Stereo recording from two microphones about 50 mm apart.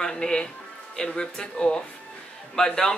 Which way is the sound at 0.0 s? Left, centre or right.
Centre.